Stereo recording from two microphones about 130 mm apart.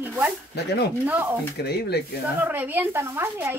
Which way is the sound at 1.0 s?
15° right (ahead or behind).